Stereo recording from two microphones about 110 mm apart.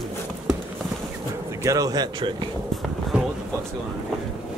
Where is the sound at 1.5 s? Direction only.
30° right (ahead or behind); by 2.4 s 50° right (ahead or behind).